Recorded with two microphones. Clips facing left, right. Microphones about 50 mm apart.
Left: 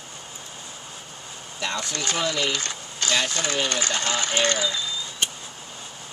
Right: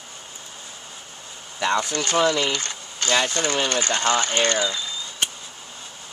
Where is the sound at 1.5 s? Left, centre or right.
Right.